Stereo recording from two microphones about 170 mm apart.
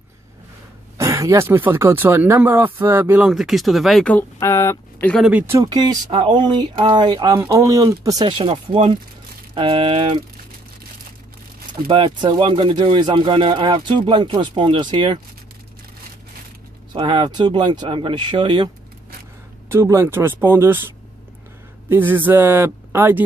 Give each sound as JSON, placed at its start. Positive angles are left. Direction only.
{"t": 0.9, "sound": "speech", "side_deg": -20}
{"t": 5.1, "sound": "speech", "side_deg": -5}
{"t": 5.5, "sound": "speech", "side_deg": -25}
{"t": 11.9, "sound": "speech", "side_deg": -30}
{"t": 16.9, "sound": "speech", "side_deg": -30}
{"t": 19.7, "sound": "speech", "side_deg": -15}